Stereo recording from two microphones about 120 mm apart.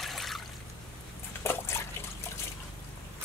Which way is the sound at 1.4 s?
20° left (ahead or behind).